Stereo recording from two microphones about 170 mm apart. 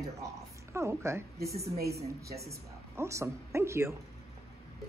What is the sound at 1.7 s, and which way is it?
Speech, 65° right (ahead or behind).